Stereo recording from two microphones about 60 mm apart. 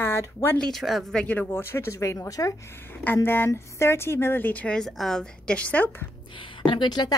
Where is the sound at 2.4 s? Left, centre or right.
Left.